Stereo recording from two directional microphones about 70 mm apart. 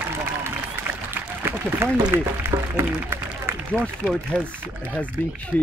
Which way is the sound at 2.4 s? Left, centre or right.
Right.